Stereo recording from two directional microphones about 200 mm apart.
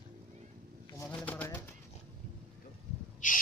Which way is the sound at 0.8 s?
10° left (ahead or behind).